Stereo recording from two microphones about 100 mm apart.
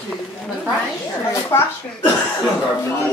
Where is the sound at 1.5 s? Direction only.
25° left (ahead or behind).